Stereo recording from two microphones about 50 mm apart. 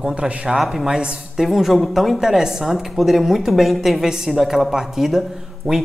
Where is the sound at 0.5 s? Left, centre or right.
Centre.